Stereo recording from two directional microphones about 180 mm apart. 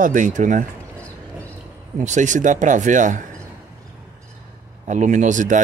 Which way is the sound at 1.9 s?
40° right (ahead or behind).